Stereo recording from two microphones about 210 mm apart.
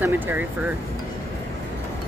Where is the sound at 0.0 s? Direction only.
10° right (ahead or behind).